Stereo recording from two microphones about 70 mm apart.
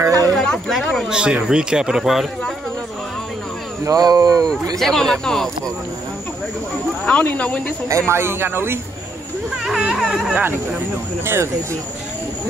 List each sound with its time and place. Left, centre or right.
0.0 s a sound: right
0.3 s a sound: centre
1.0 s speech: centre
3.8 s speech: right
4.7 s speech: centre
7.1 s speech: centre
8.1 s speech: right
9.8 s speech: centre
11.2 s speech: right